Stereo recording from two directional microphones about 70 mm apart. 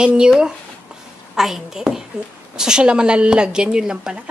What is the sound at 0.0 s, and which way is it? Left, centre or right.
A woman's voice, centre.